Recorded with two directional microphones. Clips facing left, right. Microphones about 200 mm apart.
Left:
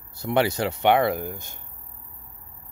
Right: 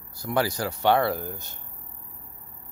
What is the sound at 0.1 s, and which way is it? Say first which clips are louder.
Speech: left 3 dB; 25° left (ahead or behind).